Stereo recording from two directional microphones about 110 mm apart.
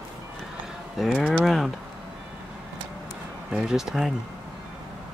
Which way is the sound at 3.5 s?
5° right (ahead or behind).